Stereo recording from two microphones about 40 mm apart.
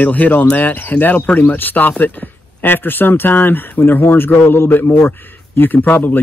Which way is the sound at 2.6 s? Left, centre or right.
Left.